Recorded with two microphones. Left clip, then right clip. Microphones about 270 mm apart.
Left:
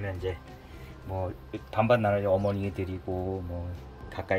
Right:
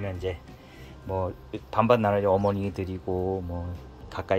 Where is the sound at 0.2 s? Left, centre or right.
Centre.